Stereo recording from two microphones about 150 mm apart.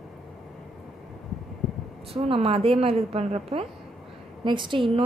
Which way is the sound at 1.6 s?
Centre (ahead or behind).